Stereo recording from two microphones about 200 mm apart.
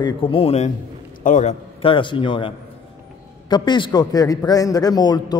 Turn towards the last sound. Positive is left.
turn(degrees=20)  # may be behind; listen again after turning